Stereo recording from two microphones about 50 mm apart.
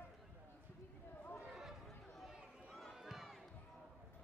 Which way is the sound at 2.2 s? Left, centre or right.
Centre.